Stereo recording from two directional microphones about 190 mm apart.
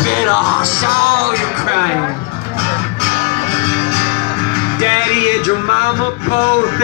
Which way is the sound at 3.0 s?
30° left (ahead or behind).